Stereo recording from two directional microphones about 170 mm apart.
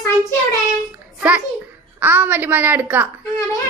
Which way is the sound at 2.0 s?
10° right (ahead or behind).